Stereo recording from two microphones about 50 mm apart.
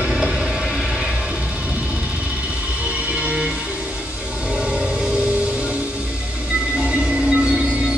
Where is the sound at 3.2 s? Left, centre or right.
Right.